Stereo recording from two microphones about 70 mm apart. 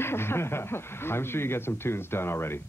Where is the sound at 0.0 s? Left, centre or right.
Left.